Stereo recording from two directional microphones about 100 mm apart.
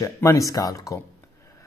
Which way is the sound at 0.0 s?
30° left (ahead or behind).